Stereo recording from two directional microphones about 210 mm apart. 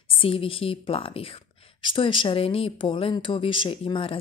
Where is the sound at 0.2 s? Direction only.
25° left (ahead or behind).